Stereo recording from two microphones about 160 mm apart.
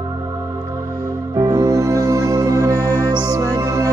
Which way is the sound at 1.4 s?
20° right (ahead or behind).